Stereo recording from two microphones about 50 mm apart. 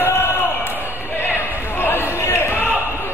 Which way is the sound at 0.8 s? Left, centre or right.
Left.